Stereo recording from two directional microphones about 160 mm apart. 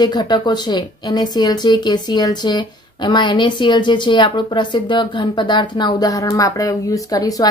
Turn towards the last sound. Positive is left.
turn(degrees=25)  # may be behind; listen again after turning